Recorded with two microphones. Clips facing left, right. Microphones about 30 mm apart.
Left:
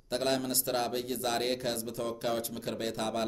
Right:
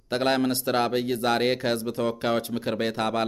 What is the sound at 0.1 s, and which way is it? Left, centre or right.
Speech, right.